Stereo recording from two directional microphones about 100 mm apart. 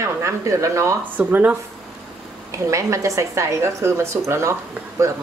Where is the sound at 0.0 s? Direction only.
30° right (ahead or behind).